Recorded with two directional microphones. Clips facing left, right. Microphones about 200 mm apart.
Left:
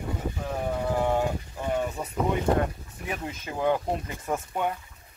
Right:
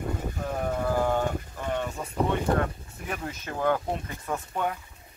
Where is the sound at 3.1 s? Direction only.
10° left (ahead or behind).